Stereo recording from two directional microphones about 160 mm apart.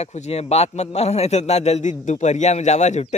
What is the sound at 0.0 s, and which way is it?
A man's voice, 40° left (ahead or behind).